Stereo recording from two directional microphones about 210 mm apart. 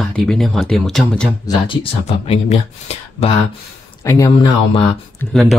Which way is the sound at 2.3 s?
30° left (ahead or behind).